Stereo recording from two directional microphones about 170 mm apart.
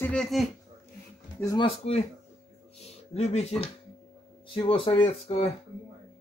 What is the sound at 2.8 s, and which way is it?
Speech, 40° left (ahead or behind).